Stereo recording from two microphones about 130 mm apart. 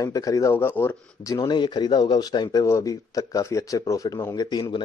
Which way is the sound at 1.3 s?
35° left (ahead or behind).